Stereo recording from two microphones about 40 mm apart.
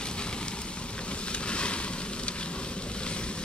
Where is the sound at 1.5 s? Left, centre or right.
Left.